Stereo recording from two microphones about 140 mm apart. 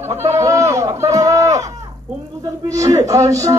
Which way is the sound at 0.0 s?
20° right (ahead or behind).